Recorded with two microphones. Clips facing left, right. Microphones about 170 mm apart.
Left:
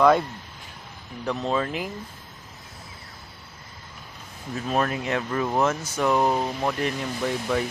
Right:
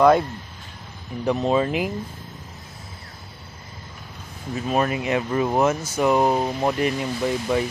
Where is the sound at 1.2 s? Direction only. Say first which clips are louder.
Right 5 dB; 15° right (ahead or behind).